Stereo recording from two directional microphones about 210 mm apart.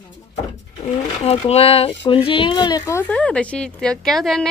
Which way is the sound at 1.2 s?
30° left (ahead or behind).